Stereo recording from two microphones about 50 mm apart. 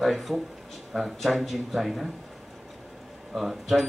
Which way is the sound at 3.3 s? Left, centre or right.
Centre.